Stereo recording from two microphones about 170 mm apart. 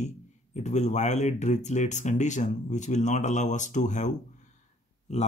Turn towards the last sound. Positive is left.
turn(degrees=40)  # may be behind; listen again after turning